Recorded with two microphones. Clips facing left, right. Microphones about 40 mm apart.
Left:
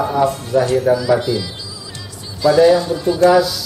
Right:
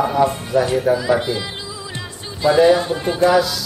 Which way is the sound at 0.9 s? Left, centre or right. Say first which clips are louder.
Left 2 dB; right.